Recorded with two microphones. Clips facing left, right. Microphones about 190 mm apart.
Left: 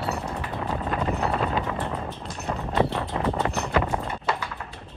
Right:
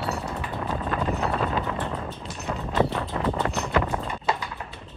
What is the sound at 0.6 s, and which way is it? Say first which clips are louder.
Wind noise: even; 15° left (ahead or behind).